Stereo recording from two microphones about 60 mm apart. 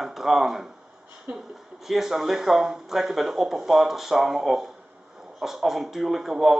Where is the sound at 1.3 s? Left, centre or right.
Right.